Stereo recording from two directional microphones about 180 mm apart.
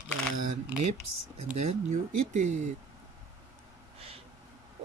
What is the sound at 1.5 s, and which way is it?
Speech, 40° right (ahead or behind).